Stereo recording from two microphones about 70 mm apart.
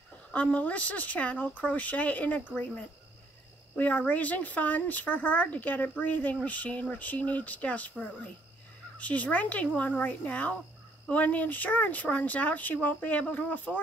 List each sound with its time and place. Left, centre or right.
0.3 s speech: left
3.7 s speech: left